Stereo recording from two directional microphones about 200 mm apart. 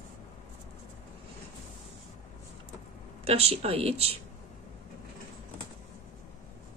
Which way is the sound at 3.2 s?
30° right (ahead or behind).